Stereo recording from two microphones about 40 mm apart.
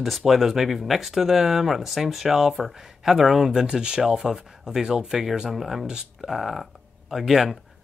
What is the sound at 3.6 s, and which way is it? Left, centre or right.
Speech, right.